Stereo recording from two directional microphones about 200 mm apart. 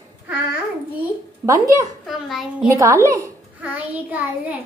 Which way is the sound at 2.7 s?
15° right (ahead or behind).